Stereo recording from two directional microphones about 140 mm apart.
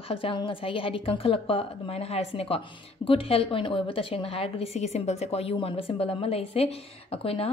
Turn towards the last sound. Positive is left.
turn(degrees=45)  # may be behind; listen again after turning